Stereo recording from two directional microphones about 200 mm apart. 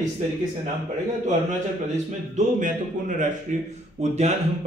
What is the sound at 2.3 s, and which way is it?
Speech, 40° right (ahead or behind).